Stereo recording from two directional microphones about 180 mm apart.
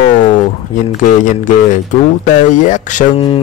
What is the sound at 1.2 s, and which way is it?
Speech, 45° left (ahead or behind).